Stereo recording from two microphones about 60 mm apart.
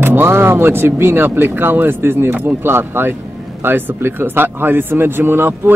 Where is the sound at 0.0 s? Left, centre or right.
Right.